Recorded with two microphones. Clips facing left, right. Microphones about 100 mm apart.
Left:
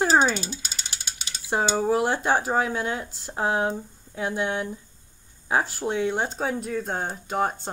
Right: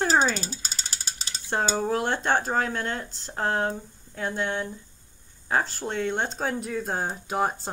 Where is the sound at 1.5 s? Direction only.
5° left (ahead or behind).